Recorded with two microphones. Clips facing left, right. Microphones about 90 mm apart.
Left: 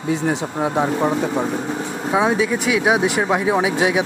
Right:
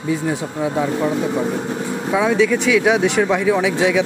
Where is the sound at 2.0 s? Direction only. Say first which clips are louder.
Right 2 dB; 25° left (ahead or behind).